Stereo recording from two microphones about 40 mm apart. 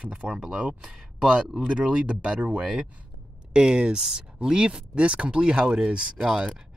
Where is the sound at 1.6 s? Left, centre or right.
Right.